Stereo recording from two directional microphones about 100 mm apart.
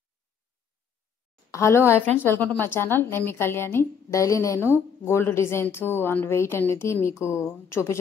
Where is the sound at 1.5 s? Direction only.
30° left (ahead or behind).